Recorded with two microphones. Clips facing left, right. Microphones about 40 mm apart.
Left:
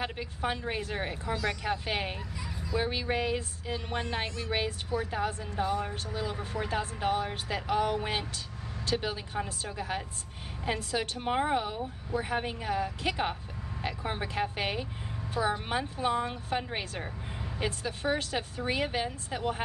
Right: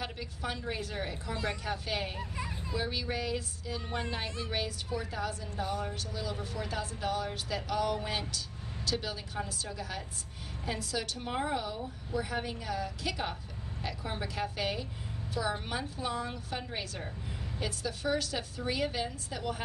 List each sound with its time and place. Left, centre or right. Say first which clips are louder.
0.0 s speech: left 5 dB; left
1.3 s speech: left 4 dB; left
1.6 s speech: left 3 dB; left
2.3 s a sound: right 1 dB; right
3.1 s speech: left 4 dB; left